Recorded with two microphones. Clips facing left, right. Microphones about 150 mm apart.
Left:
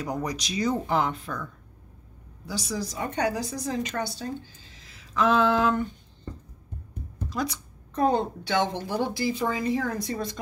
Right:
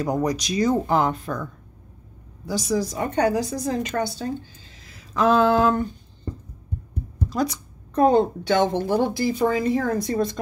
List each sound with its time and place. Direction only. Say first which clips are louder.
0.0 s a woman's voice: right 7 dB; 45° right (ahead or behind)
4.9 s a sound: right 4 dB; 40° right (ahead or behind)
7.2 s a woman's voice: right 5 dB; 40° right (ahead or behind)